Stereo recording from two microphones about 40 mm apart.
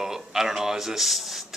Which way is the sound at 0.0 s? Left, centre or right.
Centre.